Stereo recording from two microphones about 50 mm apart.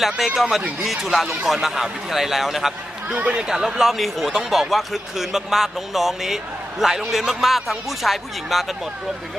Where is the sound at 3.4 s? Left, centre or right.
Centre.